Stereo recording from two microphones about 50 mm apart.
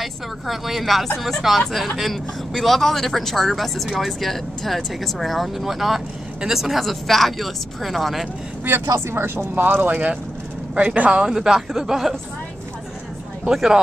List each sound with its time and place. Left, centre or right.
0.0 s a man's voice: centre
6.8 s a man's voice: centre
9.1 s speech: right
10.7 s speech: right; by 12.2 s centre
13.5 s speech: centre